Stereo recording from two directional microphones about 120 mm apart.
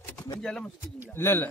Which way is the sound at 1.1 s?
20° left (ahead or behind).